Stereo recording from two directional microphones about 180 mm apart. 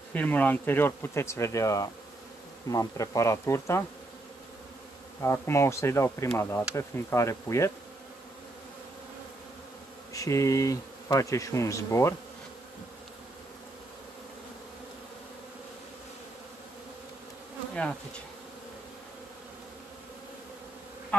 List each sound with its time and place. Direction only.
0.1 s bee: 10° left (ahead or behind)
5.2 s bee: 15° left (ahead or behind)
10.1 s bee: 15° left (ahead or behind)